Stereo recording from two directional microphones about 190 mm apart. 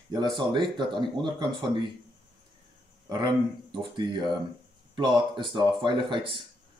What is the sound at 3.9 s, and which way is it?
Speech, 25° right (ahead or behind).